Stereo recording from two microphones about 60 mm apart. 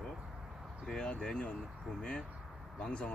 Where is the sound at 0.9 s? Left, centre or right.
Centre.